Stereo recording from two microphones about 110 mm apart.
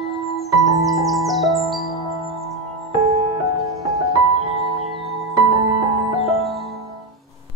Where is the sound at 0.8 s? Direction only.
Centre (ahead or behind).